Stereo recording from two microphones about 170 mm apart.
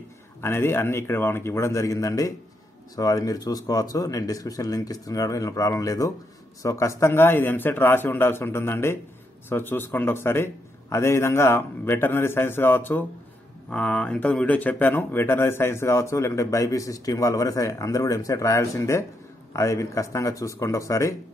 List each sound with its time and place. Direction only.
0.4 s speech: 15° left (ahead or behind)